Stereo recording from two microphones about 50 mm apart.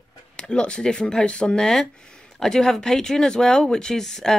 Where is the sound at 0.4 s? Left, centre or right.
Centre.